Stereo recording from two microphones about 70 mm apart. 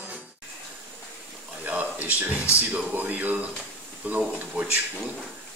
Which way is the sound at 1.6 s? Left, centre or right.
Right.